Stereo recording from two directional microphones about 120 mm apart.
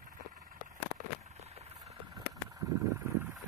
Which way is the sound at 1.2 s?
60° right (ahead or behind).